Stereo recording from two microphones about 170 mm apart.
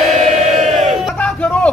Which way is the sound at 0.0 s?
Centre (ahead or behind).